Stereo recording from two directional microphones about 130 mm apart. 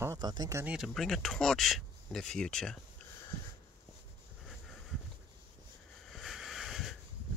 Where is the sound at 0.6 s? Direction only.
10° right (ahead or behind).